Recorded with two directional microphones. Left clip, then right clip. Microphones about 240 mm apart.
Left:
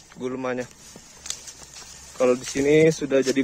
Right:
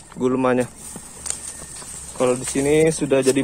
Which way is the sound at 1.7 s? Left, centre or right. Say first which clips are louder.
Right 1 dB; centre.